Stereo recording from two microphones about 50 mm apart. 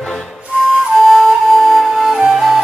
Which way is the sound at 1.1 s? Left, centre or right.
Centre.